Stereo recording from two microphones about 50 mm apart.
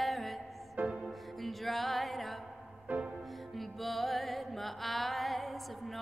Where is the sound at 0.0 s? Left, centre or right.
Centre.